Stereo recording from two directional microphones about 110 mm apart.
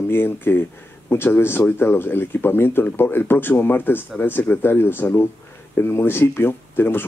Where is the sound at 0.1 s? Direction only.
20° left (ahead or behind).